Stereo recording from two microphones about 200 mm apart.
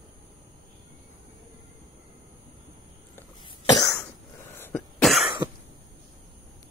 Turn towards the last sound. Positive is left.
turn(degrees=-5)  # may be behind; listen again after turning